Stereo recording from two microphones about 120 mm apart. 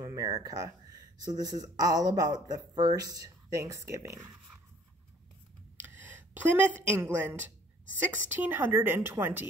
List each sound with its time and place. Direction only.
0.0 s speech: 30° right (ahead or behind)
6.3 s a woman's voice: 15° right (ahead or behind)